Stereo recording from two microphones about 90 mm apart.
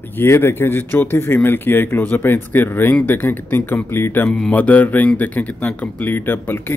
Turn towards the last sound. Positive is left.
turn(degrees=25)  # may be behind; listen again after turning